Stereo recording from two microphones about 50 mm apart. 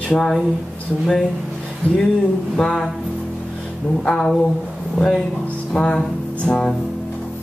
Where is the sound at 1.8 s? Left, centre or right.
Left.